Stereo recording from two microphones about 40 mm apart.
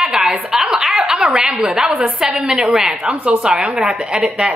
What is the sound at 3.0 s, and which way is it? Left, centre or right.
Speech, right.